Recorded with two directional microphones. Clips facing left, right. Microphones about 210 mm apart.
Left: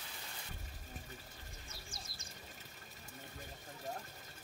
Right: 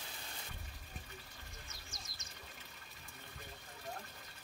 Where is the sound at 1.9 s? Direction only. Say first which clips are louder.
Left 2 dB; 30° left (ahead or behind).